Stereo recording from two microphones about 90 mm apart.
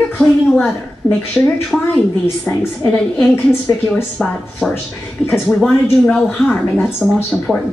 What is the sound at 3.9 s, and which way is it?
Speech, 10° left (ahead or behind).